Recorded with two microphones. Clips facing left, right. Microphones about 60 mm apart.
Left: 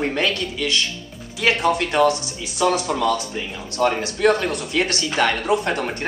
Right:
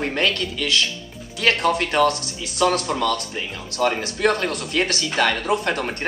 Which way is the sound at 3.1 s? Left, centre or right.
Right.